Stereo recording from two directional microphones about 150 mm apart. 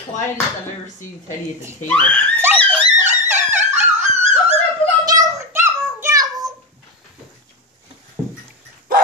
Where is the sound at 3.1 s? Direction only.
50° right (ahead or behind).